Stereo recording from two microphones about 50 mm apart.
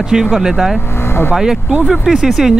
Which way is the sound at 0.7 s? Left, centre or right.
Left.